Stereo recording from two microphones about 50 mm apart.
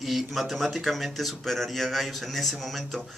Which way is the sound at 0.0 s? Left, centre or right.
Centre.